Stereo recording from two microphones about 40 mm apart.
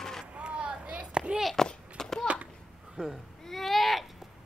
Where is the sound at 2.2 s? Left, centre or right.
Right.